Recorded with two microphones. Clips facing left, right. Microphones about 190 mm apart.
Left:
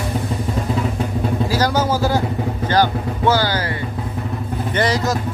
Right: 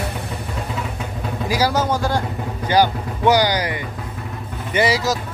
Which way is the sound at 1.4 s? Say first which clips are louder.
Right 2 dB; 10° right (ahead or behind).